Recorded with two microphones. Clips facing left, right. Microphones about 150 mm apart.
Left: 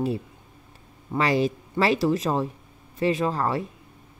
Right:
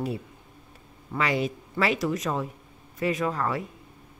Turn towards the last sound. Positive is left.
turn(degrees=30)  # may be behind; listen again after turning